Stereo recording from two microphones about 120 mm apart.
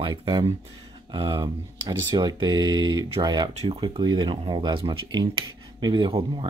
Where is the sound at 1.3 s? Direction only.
35° right (ahead or behind).